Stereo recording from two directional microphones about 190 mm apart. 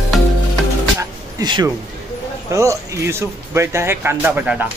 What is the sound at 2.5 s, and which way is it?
Speech, 15° right (ahead or behind).